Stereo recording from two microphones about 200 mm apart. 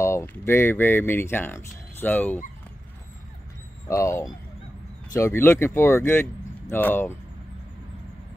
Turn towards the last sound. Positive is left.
turn(degrees=10)  # may be behind; listen again after turning